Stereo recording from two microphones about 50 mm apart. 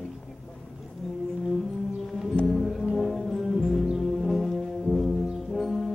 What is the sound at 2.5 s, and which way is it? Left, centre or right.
Music, centre.